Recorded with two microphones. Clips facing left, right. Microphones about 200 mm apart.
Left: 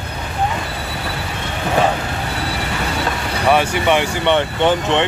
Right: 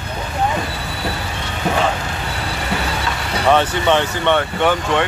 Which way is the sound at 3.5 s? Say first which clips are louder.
Even; 10° left (ahead or behind).